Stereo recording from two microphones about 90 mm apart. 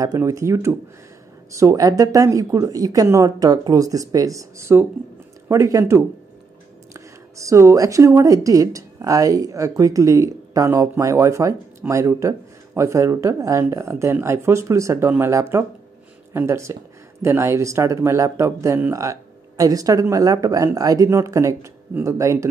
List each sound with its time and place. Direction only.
0.0 s a woman's voice: 40° right (ahead or behind)